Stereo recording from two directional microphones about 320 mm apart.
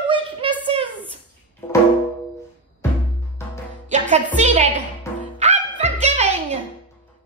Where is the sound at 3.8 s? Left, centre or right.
Right.